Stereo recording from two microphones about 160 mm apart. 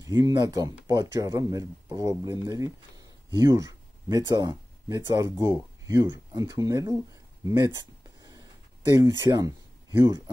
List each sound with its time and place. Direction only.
0.0 s speech: 25° right (ahead or behind)
7.4 s a sound: 25° right (ahead or behind)
8.9 s speech: 20° right (ahead or behind)